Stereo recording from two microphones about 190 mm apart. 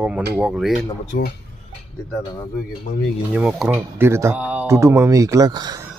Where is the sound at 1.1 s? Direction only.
55° left (ahead or behind).